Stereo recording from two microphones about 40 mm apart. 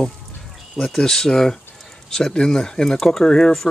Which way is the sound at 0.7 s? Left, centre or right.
Centre.